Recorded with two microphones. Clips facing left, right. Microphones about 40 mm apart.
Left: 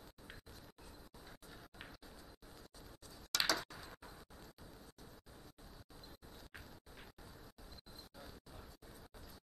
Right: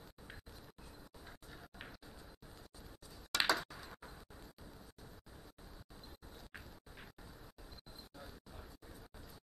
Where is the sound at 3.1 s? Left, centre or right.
Centre.